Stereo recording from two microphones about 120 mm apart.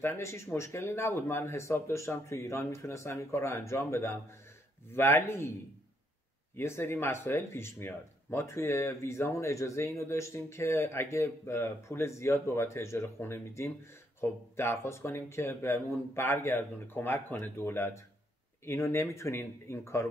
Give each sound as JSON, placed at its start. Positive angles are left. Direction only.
{"t": 0.0, "sound": "speech", "side_deg": 25}
{"t": 6.5, "sound": "speech", "side_deg": 20}